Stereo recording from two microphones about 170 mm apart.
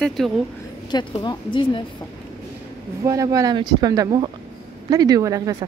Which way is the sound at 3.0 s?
20° right (ahead or behind).